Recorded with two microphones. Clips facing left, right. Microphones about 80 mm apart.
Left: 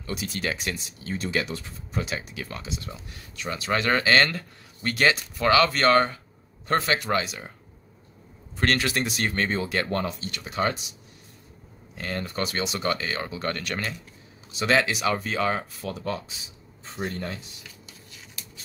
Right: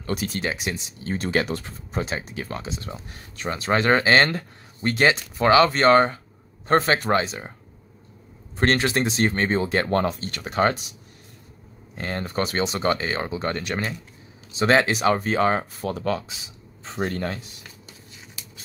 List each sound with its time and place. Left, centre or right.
0.0 s speech: right
0.4 s speech: right
1.0 s speech: right
2.0 s speech: right
8.5 s speech: right
11.9 s speech: right
14.6 s speech: right
16.0 s a man's voice: right